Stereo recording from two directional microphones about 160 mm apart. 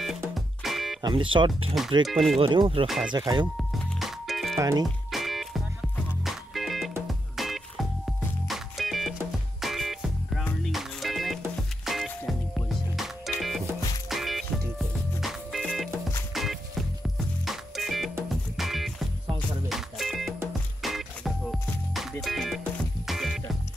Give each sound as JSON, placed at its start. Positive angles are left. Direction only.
{"t": 0.3, "sound": "music", "side_deg": 0}
{"t": 1.0, "sound": "speech", "side_deg": -30}
{"t": 2.0, "sound": "speech", "side_deg": 0}
{"t": 2.4, "sound": "speech", "side_deg": -30}
{"t": 3.5, "sound": "music", "side_deg": 0}
{"t": 4.6, "sound": "speech", "side_deg": -20}
{"t": 4.8, "sound": "music", "side_deg": 0}